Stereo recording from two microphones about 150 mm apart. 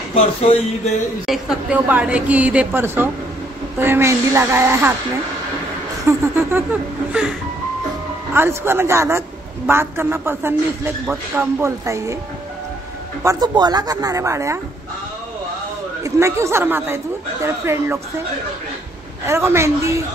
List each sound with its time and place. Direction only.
1.2 s speech: centre (ahead or behind)
6.0 s speech: 15° right (ahead or behind)
13.2 s speech: 25° right (ahead or behind)
16.0 s speech: 20° right (ahead or behind)
19.2 s speech: 15° right (ahead or behind)